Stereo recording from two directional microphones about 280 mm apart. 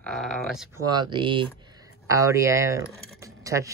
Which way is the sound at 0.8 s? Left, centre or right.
Centre.